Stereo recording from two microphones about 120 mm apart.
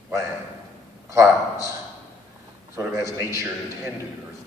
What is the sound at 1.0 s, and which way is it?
Speech, 25° right (ahead or behind).